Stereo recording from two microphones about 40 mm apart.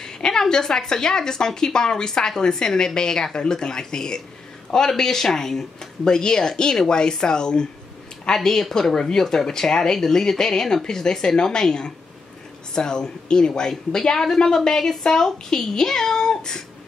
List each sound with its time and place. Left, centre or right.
0.0 s a woman's voice: centre
8.3 s a woman's voice: centre